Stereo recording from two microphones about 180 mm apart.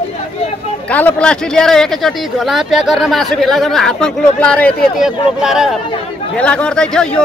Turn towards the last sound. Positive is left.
turn(degrees=5)  # may be behind; listen again after turning